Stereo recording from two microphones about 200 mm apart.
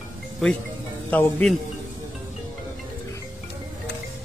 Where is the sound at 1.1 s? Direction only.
5° left (ahead or behind).